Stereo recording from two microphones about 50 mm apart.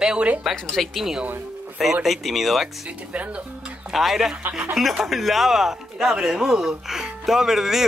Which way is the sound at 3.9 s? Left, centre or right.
Centre.